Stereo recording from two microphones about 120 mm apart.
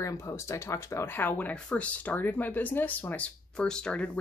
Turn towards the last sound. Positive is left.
turn(degrees=5)  # may be behind; listen again after turning